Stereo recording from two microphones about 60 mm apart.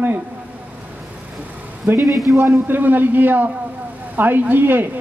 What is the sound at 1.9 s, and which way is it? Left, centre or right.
A man's voice, right.